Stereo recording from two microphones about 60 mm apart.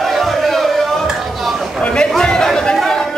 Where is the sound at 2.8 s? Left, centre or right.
Centre.